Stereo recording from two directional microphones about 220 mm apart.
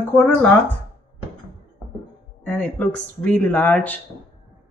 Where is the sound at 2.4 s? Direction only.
5° left (ahead or behind).